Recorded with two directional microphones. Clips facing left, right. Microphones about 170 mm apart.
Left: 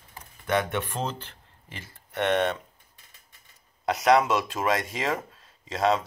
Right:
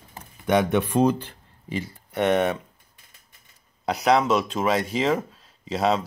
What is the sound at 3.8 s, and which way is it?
Speech, centre (ahead or behind).